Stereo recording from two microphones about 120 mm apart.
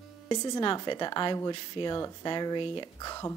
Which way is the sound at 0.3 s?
35° left (ahead or behind).